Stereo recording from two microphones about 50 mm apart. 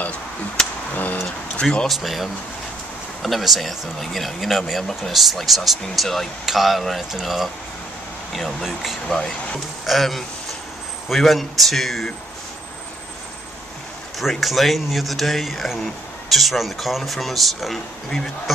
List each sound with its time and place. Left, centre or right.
0.6 s a sound: centre
1.6 s speech: left
2.0 s speech: centre
8.3 s speech: centre
14.4 s speech: centre